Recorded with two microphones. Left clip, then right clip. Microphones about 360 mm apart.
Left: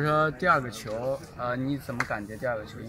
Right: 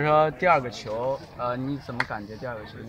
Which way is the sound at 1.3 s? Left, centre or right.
Centre.